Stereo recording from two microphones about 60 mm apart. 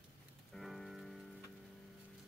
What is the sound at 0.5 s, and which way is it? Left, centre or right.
Rain on surface, centre.